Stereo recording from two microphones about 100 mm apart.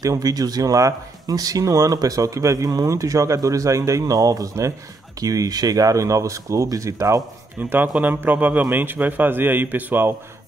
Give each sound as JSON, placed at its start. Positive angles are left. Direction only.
{"t": 0.0, "sound": "speech", "side_deg": -35}
{"t": 8.0, "sound": "a man's voice", "side_deg": -20}